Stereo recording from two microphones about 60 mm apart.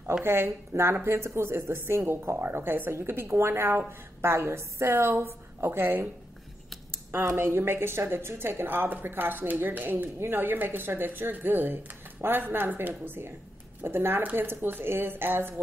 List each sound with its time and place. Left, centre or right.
0.2 s speech: right
7.1 s speech: right